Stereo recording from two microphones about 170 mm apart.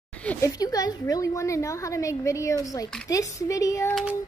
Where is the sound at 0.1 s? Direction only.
10° left (ahead or behind).